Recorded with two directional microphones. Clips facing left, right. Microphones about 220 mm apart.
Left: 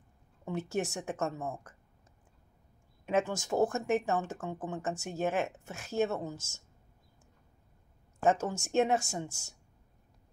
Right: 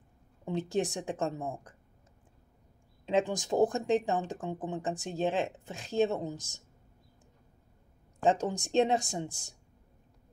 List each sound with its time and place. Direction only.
0.5 s speech: 15° right (ahead or behind)
3.1 s speech: 15° right (ahead or behind)
8.2 s speech: 15° right (ahead or behind)